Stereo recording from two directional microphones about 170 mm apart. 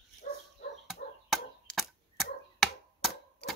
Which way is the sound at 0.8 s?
Centre (ahead or behind).